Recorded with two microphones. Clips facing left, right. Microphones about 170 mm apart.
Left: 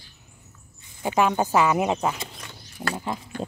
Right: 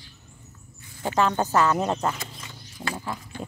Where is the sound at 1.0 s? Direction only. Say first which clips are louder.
Left 1 dB; 10° left (ahead or behind).